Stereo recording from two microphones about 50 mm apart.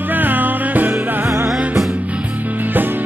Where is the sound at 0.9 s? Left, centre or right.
Right.